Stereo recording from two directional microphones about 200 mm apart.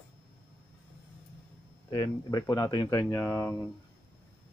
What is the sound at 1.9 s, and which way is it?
Speech, 20° left (ahead or behind).